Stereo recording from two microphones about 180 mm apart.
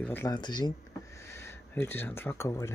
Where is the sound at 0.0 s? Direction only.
10° left (ahead or behind).